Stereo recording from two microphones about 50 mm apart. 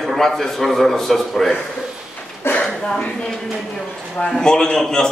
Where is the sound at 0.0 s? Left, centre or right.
Centre.